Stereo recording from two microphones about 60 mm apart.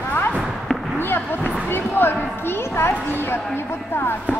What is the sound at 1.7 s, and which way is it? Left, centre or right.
Speech, left.